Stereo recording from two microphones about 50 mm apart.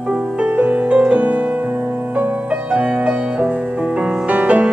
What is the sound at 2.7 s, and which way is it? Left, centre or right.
Music, right.